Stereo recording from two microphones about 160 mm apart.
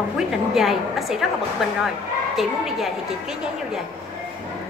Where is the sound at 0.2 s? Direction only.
Centre (ahead or behind).